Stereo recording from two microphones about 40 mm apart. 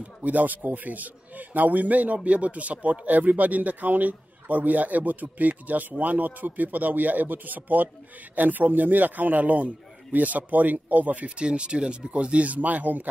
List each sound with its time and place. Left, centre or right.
0.0 s speech: right
11.3 s speech: right
12.4 s speech: right